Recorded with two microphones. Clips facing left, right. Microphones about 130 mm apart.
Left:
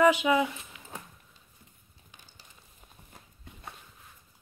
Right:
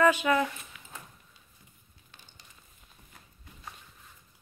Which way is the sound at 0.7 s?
25° left (ahead or behind).